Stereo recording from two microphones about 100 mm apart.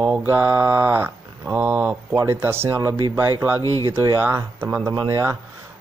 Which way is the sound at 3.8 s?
30° right (ahead or behind).